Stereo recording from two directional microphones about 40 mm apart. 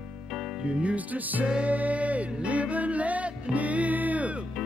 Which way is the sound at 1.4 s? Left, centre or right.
Right.